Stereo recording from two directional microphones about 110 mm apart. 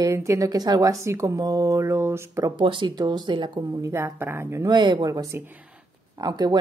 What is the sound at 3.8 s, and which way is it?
Speech, 25° right (ahead or behind).